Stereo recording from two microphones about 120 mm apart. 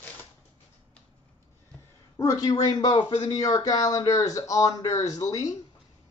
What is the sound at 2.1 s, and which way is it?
Speech, 30° left (ahead or behind).